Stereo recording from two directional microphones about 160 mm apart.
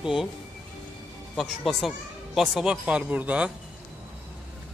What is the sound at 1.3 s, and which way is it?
A man's voice, centre (ahead or behind).